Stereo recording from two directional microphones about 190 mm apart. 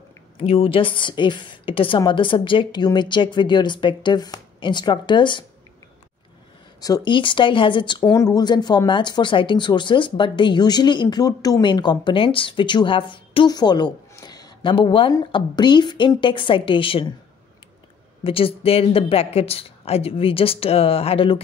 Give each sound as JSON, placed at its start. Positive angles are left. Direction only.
{"t": 0.4, "sound": "speech", "side_deg": 30}
{"t": 6.8, "sound": "speech", "side_deg": 20}
{"t": 18.2, "sound": "speech", "side_deg": 30}